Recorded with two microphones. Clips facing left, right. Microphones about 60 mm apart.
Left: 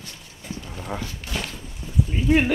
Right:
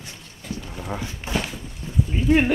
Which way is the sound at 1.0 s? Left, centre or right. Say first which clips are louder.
Right 4 dB; right.